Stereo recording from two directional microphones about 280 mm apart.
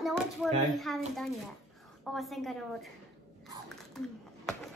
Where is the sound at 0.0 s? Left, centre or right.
Centre.